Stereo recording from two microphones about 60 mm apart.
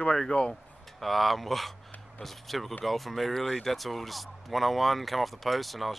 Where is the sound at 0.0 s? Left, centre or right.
Centre.